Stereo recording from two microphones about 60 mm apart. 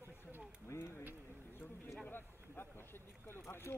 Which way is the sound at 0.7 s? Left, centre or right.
Left.